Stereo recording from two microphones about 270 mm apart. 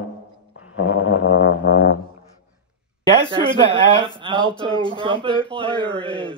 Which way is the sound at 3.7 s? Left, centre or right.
Centre.